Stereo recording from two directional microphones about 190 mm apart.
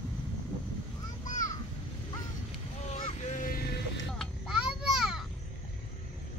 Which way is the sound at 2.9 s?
35° left (ahead or behind).